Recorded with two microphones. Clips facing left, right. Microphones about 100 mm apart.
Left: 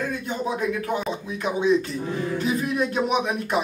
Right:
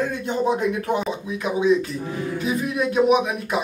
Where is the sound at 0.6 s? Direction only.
20° right (ahead or behind).